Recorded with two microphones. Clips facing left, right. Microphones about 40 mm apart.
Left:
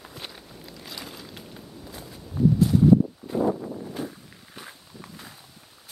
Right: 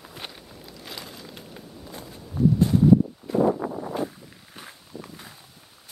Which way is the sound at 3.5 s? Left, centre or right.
Right.